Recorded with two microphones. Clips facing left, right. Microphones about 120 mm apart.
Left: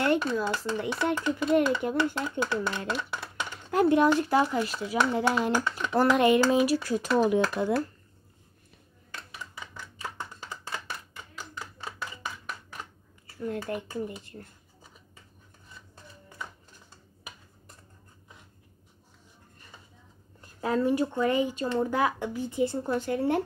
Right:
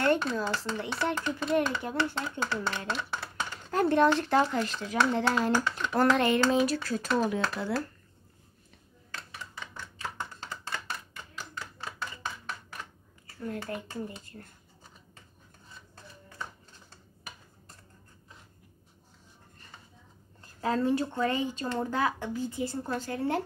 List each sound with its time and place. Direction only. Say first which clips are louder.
0.4 s speech: left 3 dB; 15° left (ahead or behind)
13.5 s speech: left 3 dB; 20° left (ahead or behind)
20.6 s speech: left 2 dB; 15° left (ahead or behind)